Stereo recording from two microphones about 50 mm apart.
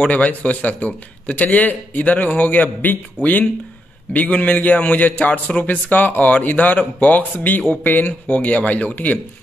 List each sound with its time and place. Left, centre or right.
0.1 s a man's voice: left